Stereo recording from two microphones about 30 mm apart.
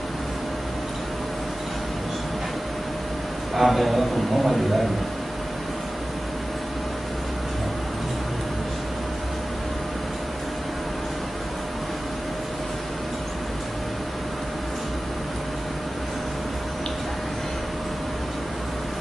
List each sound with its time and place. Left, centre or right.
3.5 s a man's voice: centre